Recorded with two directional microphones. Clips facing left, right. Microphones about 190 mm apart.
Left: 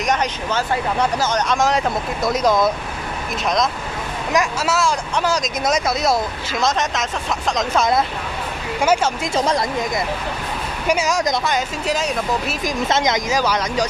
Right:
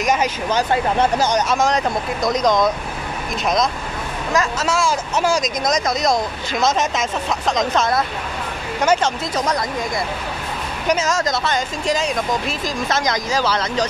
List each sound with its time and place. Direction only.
0.0 s speech: 5° right (ahead or behind)
1.5 s speech: centre (ahead or behind)
4.3 s speech: 10° left (ahead or behind); by 5.5 s 5° right (ahead or behind)
5.6 s speech: 5° left (ahead or behind)
8.8 s speech: 10° left (ahead or behind)
9.3 s speech: 30° left (ahead or behind)
10.9 s speech: 10° left (ahead or behind)
12.6 s speech: 20° left (ahead or behind)
13.3 s speech: 10° left (ahead or behind)